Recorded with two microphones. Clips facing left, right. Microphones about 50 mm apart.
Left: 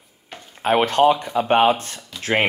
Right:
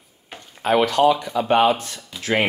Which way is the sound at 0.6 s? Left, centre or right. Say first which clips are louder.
Left 1 dB; left.